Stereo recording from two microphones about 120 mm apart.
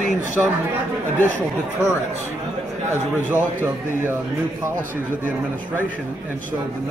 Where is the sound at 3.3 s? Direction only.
15° right (ahead or behind).